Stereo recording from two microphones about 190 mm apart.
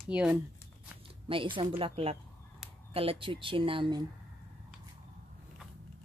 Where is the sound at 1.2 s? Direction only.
25° right (ahead or behind).